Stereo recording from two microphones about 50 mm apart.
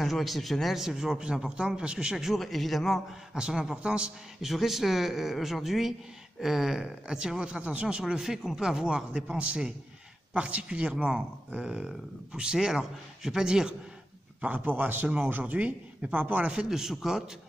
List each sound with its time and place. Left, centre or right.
0.0 s speech: centre
0.8 s speech: centre
2.1 s speech: centre
3.3 s speech: centre
4.4 s speech: centre; by 8.0 s right
8.1 s speech: centre
14.4 s a man's voice: right
16.6 s speech: centre